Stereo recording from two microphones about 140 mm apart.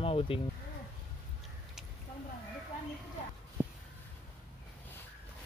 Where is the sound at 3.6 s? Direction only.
20° right (ahead or behind).